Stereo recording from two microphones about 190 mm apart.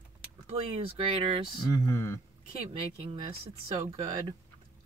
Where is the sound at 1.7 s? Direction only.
15° left (ahead or behind).